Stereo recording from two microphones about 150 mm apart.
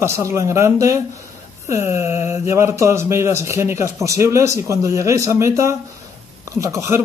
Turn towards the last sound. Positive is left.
turn(degrees=-20)  # may be behind; listen again after turning